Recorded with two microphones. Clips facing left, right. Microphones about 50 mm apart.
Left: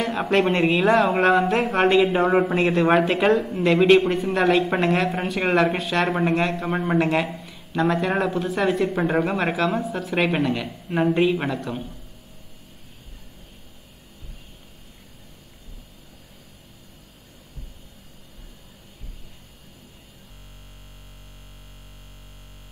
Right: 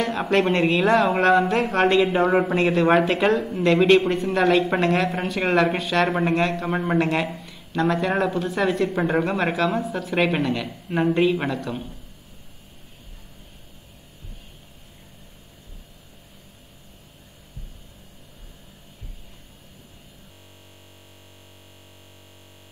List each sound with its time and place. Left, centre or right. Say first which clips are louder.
0.0 s speech: even; centre